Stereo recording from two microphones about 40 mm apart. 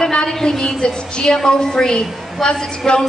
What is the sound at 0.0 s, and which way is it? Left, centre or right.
A woman's voice, centre.